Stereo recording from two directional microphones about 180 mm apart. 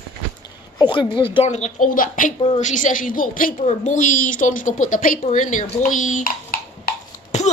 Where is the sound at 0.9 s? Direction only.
25° left (ahead or behind).